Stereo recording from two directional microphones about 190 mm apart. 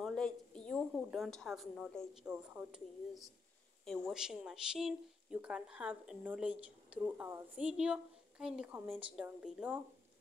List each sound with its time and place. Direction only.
0.0 s speech: 5° left (ahead or behind)